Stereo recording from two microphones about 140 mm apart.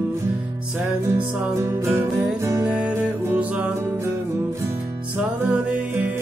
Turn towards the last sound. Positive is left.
turn(degrees=-10)  # may be behind; listen again after turning